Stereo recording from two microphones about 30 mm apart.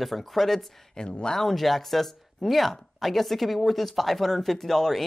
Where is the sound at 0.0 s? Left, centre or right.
Centre.